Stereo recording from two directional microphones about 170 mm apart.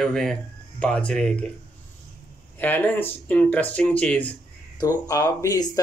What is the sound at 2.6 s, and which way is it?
Speech, 10° left (ahead or behind).